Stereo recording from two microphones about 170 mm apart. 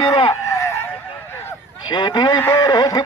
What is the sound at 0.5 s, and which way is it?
Fowl, 15° left (ahead or behind).